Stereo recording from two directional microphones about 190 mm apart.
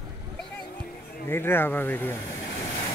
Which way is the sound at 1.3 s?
10° left (ahead or behind).